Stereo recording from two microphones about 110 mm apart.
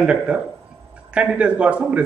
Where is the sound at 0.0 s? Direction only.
10° right (ahead or behind).